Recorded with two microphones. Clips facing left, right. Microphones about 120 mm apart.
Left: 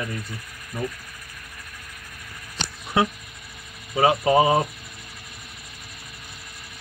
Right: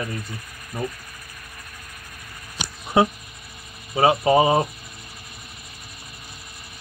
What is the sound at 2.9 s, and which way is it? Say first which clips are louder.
Speech: right 4 dB; 20° right (ahead or behind).